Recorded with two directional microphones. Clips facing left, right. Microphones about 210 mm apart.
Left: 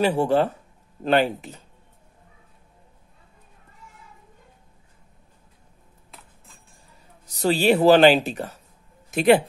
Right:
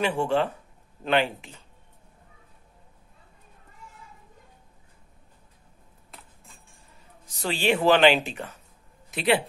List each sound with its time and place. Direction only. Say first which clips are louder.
0.0 s speech: left 5 dB; 35° left (ahead or behind)
7.2 s speech: left 6 dB; 40° left (ahead or behind)